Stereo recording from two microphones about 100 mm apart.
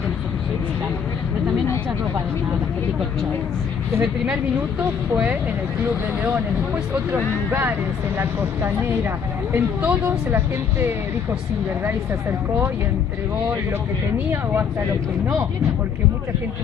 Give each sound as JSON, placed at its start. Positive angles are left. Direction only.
{"t": 5.1, "sound": "speech", "side_deg": -15}
{"t": 8.2, "sound": "speech", "side_deg": -20}
{"t": 14.1, "sound": "speech", "side_deg": -20}